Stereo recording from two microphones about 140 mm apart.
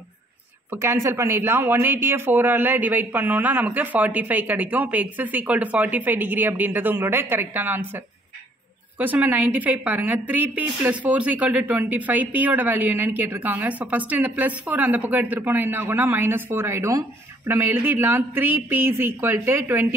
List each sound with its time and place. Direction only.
0.7 s a woman's voice: 20° right (ahead or behind)
8.9 s a woman's voice: 10° right (ahead or behind)